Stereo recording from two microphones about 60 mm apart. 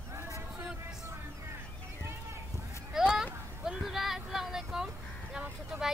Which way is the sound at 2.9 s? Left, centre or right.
Centre.